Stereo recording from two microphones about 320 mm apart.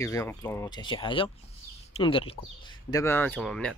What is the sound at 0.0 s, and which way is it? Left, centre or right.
Speech, centre.